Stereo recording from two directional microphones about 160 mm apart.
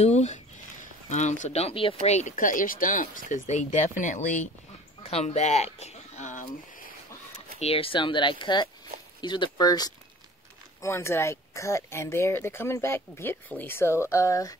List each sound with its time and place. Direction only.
0.0 s speech: 45° left (ahead or behind)
2.0 s speech: 45° left (ahead or behind)
7.3 s speech: 40° left (ahead or behind); by 14.6 s 20° left (ahead or behind)